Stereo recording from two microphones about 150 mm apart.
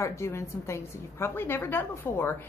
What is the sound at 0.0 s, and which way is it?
Speech, 20° left (ahead or behind).